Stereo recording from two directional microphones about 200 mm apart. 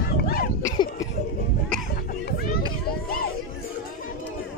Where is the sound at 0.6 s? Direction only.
15° left (ahead or behind).